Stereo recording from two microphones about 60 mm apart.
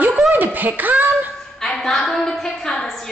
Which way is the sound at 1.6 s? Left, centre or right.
Centre.